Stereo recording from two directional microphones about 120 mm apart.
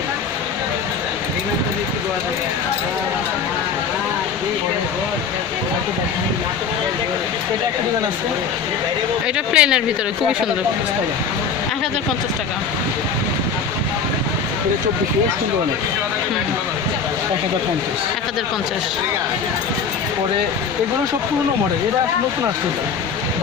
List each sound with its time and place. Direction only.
9.5 s speech: 10° right (ahead or behind)